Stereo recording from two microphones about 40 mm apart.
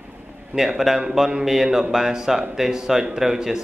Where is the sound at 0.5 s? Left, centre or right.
Right.